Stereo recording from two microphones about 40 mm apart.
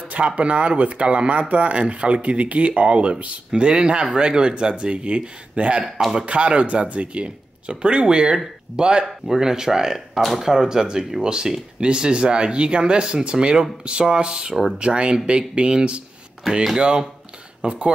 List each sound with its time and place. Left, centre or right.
0.4 s speech: right
5.9 s a man's voice: centre
6.1 s speech: right